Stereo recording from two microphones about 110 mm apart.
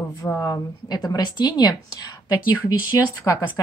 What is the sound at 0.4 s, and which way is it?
Speech, 35° left (ahead or behind).